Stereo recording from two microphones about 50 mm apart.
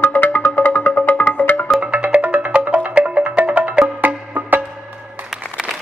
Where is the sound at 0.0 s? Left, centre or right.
Left.